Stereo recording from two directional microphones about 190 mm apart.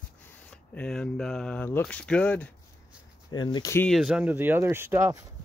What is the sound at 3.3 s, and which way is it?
Speech, 25° left (ahead or behind).